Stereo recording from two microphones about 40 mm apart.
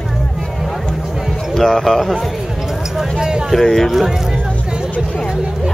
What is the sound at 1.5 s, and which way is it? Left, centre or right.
Speech, centre.